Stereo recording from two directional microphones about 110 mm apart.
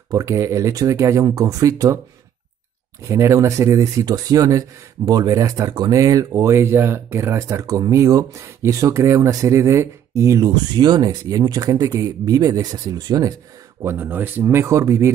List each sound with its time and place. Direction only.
0.1 s speech: 30° right (ahead or behind)
3.1 s speech: 25° right (ahead or behind)
13.8 s speech: 20° right (ahead or behind)